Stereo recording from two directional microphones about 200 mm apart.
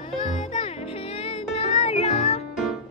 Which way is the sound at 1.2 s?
30° left (ahead or behind).